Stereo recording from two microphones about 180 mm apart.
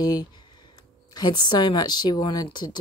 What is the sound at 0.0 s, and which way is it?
A woman's voice, 20° left (ahead or behind).